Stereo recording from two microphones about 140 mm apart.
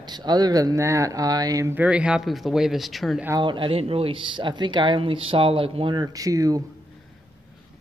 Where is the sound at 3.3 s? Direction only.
35° right (ahead or behind).